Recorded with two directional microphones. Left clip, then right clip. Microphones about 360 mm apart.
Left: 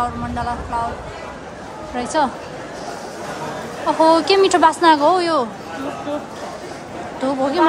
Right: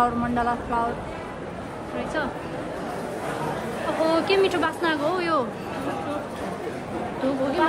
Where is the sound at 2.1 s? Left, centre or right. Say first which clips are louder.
Left 11 dB; centre.